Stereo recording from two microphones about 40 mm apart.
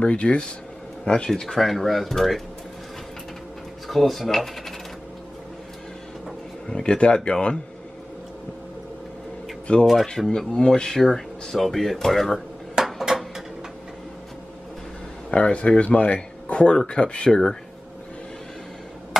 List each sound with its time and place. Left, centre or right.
0.0 s speech: left
1.3 s speech: centre
3.8 s speech: centre
6.7 s speech: centre
9.7 s speech: left
10.1 s speech: centre
10.5 s speech: centre
11.0 s speech: centre
12.8 s a sound: centre
15.3 s speech: left